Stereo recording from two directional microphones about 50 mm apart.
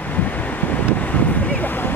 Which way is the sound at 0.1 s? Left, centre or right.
Left.